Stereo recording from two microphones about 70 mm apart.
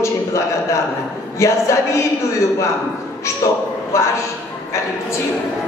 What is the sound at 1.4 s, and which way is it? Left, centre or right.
Speech, left.